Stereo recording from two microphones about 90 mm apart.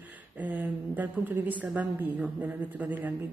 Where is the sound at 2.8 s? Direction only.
20° right (ahead or behind).